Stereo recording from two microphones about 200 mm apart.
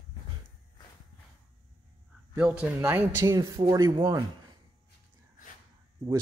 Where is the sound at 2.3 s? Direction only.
5° right (ahead or behind).